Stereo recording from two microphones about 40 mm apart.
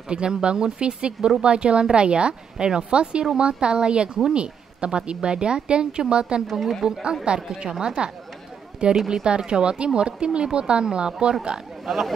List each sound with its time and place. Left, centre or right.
0.1 s speech: right
6.5 s a woman's voice: centre
7.3 s a woman's voice: right
9.2 s speech: right
11.8 s speech: centre